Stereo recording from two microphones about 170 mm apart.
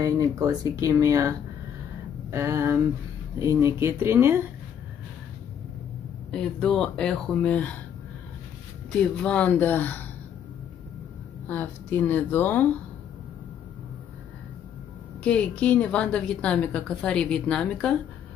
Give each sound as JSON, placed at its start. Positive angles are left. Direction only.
{"t": 0.0, "sound": "speech", "side_deg": -20}
{"t": 2.3, "sound": "speech", "side_deg": -15}
{"t": 6.3, "sound": "speech", "side_deg": 5}
{"t": 9.1, "sound": "a woman's voice", "side_deg": 5}
{"t": 11.4, "sound": "a woman's voice", "side_deg": 10}
{"t": 15.2, "sound": "a woman's voice", "side_deg": 5}